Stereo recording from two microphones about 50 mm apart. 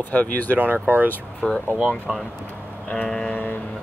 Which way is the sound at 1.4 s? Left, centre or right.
Left.